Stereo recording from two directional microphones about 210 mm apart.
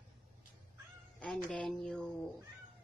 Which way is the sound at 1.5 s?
Centre (ahead or behind).